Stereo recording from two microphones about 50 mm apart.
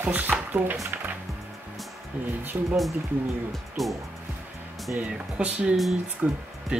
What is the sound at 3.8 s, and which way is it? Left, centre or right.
Speech, centre.